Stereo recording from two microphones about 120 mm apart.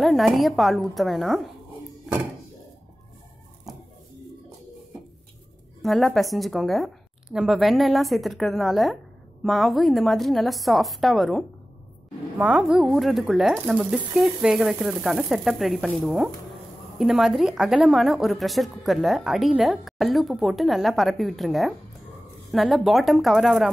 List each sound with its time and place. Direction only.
0.0 s speech: centre (ahead or behind)
5.8 s speech: centre (ahead or behind)